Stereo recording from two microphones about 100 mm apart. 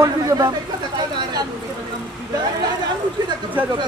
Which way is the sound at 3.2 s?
45° right (ahead or behind).